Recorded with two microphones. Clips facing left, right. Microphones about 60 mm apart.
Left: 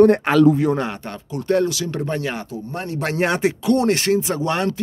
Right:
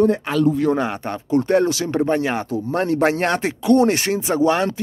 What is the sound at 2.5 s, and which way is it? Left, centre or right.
Speech, right.